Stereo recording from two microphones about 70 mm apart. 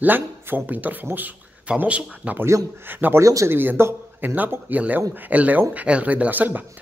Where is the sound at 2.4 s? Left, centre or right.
Right.